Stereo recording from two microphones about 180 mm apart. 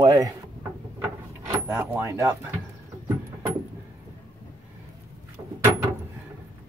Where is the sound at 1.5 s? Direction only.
10° right (ahead or behind).